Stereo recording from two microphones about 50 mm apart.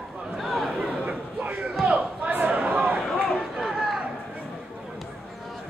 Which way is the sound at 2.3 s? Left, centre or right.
Right.